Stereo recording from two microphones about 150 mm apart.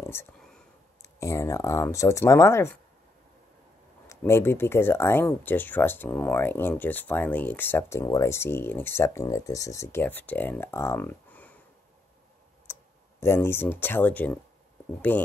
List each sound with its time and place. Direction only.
0.0 s a sound: 15° left (ahead or behind)
1.0 s speech: 20° left (ahead or behind)
4.1 s speech: 15° left (ahead or behind)
12.7 s clicking: 15° left (ahead or behind)
13.2 s speech: 15° left (ahead or behind)